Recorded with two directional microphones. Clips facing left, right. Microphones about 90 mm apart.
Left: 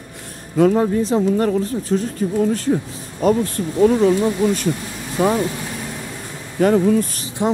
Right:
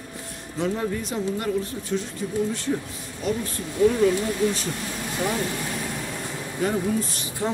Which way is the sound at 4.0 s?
30° left (ahead or behind).